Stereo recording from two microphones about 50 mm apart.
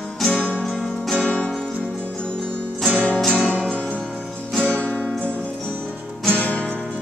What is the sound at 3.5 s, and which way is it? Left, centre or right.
Music, centre.